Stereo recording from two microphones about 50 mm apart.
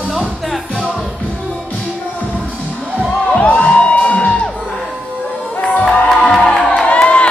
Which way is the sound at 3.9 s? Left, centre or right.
Left.